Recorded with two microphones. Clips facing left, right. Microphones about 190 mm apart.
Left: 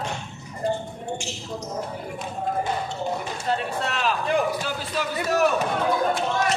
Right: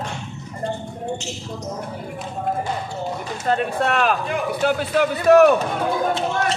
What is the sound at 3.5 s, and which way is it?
A man's voice, 55° right (ahead or behind).